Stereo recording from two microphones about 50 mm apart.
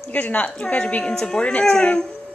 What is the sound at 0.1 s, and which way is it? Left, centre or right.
A woman's voice, left.